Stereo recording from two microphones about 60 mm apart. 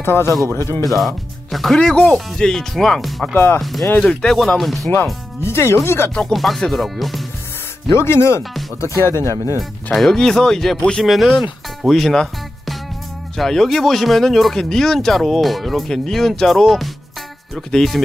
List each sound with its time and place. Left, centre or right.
0.0 s speech: left
0.8 s speech: centre
1.8 s speech: centre
4.0 s speech: centre
4.6 s speech: centre
5.4 s speech: left
6.3 s speech: centre
7.9 s speech: left
9.9 s speech: centre
11.1 s speech: centre